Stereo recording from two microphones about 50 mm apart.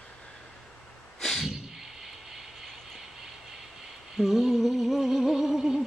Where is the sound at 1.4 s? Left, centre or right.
Centre.